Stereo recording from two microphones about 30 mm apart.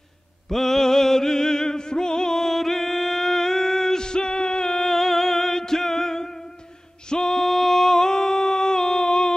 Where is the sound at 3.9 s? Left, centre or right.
Left.